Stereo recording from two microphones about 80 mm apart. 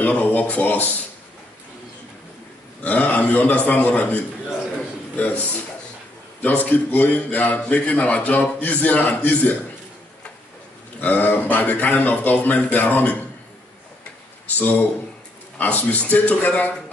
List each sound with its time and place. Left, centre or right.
0.0 s a man's voice: centre
2.8 s a man's voice: centre
11.0 s a man's voice: left
15.5 s a man's voice: left